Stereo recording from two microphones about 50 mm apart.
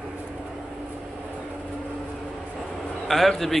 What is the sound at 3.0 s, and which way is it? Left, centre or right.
Speech, centre.